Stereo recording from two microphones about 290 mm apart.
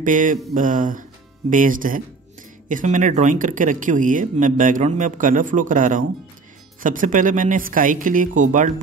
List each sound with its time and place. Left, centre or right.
0.0 s speech: right